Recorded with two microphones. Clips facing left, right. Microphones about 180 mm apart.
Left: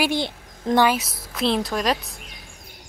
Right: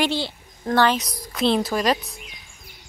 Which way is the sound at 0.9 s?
Centre (ahead or behind).